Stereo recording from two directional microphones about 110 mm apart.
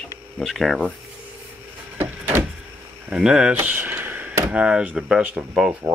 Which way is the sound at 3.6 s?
15° right (ahead or behind).